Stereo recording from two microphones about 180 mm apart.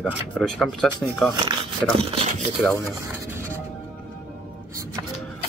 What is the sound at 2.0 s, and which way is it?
Speech, 35° right (ahead or behind).